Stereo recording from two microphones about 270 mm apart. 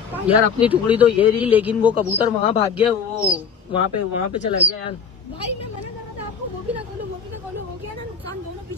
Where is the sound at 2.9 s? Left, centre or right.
Centre.